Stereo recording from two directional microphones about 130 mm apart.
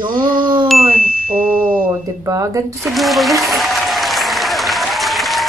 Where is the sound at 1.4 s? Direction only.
10° right (ahead or behind).